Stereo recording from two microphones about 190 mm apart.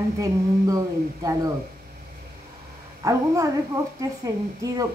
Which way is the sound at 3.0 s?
15° right (ahead or behind).